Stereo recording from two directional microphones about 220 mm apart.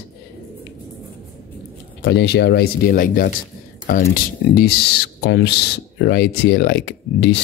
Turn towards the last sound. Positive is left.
turn(degrees=50)  # may be behind; listen again after turning